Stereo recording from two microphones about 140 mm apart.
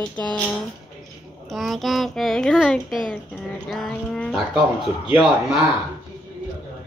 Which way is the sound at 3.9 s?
10° left (ahead or behind).